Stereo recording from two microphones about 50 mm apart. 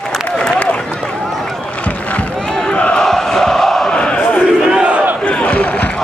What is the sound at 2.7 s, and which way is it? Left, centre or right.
Crowd, centre.